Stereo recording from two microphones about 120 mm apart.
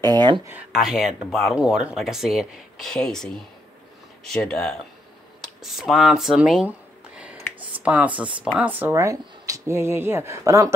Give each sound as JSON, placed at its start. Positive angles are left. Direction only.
{"t": 0.0, "sound": "speech", "side_deg": -35}
{"t": 0.7, "sound": "speech", "side_deg": -5}
{"t": 7.8, "sound": "speech", "side_deg": -10}
{"t": 8.9, "sound": "speech", "side_deg": -25}